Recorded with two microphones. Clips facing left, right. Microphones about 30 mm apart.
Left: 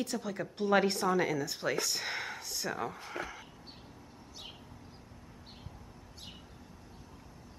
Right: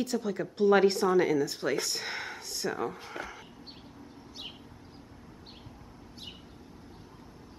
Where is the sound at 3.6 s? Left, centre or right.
Right.